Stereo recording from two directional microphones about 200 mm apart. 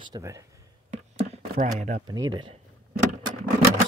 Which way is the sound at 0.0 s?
15° right (ahead or behind).